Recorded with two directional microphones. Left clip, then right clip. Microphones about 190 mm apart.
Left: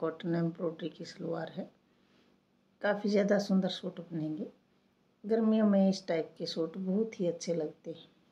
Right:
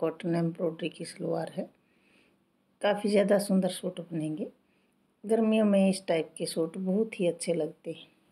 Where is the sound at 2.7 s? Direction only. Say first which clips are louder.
Right 4 dB; 25° right (ahead or behind).